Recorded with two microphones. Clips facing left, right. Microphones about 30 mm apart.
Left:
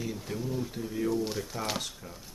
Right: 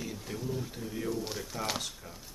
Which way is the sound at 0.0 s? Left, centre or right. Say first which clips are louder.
Left 3 dB; centre.